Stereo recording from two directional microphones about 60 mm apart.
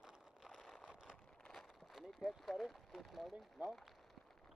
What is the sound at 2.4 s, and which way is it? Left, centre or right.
Speech, centre.